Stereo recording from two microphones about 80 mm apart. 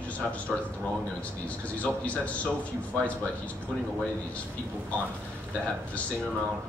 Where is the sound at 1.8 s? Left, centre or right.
Centre.